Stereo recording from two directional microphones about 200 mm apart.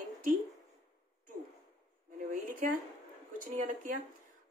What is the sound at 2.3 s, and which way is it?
Speech, 45° right (ahead or behind).